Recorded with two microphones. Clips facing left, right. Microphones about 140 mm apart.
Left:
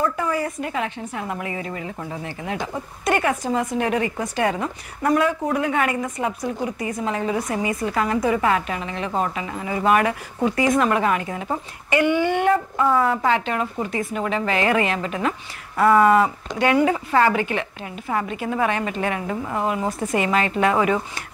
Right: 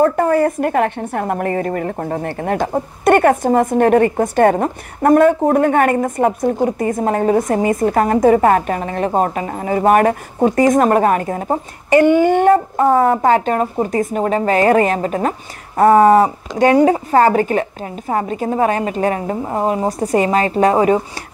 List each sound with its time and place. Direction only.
0.0 s a woman's voice: 50° right (ahead or behind); by 21.0 s 35° right (ahead or behind)